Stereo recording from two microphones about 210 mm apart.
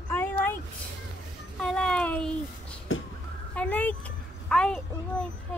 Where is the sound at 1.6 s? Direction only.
5° left (ahead or behind).